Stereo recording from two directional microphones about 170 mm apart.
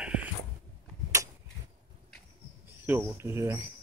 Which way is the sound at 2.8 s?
15° right (ahead or behind).